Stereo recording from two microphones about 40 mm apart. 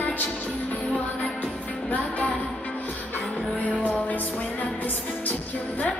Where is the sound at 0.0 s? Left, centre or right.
Left.